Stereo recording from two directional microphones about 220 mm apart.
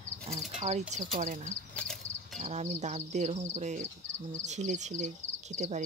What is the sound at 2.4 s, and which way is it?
Speech, 30° right (ahead or behind).